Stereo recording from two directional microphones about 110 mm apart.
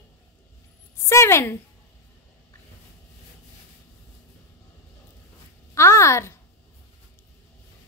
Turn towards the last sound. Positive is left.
turn(degrees=25)  # may be behind; listen again after turning